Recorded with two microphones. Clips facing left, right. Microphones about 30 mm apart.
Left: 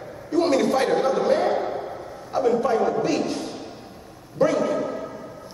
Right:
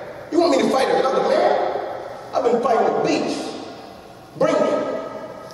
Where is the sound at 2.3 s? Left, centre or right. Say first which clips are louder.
Right 3 dB; right.